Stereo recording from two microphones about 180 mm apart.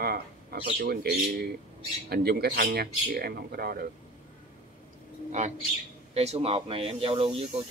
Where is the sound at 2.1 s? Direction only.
60° right (ahead or behind).